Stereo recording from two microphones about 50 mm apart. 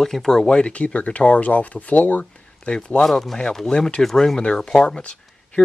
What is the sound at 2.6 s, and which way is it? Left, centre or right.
Speech, left.